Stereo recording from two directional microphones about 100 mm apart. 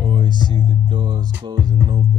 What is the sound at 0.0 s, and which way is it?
Music, 55° right (ahead or behind).